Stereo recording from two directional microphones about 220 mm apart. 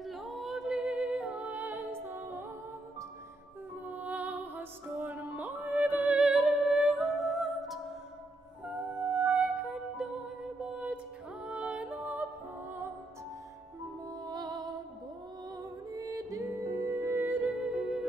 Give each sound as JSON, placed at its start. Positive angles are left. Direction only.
{"t": 0.0, "sound": "music", "side_deg": 0}
{"t": 3.8, "sound": "music", "side_deg": -5}
{"t": 9.0, "sound": "music", "side_deg": -5}
{"t": 14.0, "sound": "music", "side_deg": -15}